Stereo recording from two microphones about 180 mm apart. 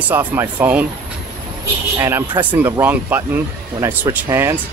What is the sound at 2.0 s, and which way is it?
Speech, 15° right (ahead or behind).